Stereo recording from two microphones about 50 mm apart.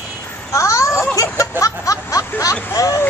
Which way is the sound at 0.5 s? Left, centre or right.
Left.